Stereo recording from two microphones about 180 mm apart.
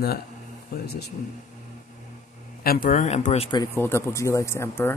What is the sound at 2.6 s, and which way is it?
Speech, 55° left (ahead or behind).